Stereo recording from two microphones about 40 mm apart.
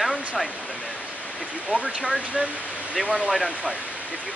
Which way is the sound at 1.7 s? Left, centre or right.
Right.